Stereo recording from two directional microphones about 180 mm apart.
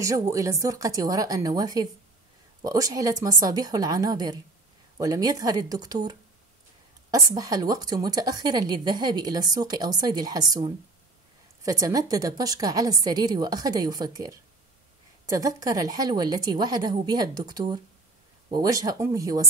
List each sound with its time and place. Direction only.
0.0 s a woman's voice: 15° right (ahead or behind)